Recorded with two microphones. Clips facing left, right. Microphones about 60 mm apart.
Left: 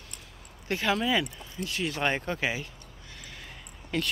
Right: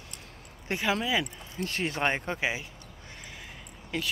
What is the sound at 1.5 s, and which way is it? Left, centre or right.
Speech, right.